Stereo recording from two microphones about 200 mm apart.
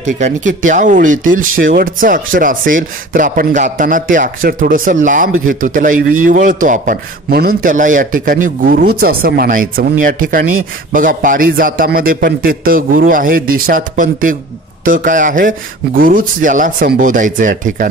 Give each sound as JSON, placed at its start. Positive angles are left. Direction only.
{"t": 0.0, "sound": "speech", "side_deg": -35}